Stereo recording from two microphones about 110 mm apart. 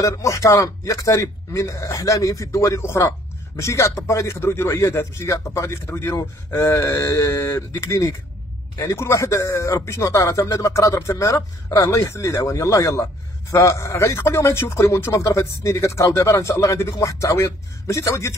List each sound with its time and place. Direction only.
0.0 s a man's voice: 30° left (ahead or behind)